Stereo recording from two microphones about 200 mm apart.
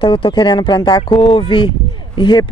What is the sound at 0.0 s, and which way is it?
Speech, 25° left (ahead or behind).